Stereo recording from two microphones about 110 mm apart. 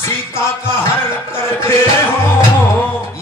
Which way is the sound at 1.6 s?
25° left (ahead or behind).